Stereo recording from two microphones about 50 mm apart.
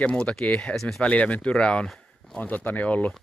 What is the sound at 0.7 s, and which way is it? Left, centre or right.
Speech, centre.